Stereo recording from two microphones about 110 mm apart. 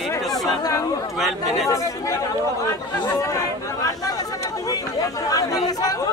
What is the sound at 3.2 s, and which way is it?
Speech, 30° left (ahead or behind).